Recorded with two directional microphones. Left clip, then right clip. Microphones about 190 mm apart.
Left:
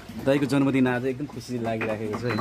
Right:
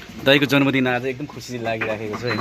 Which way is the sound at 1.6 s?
10° left (ahead or behind).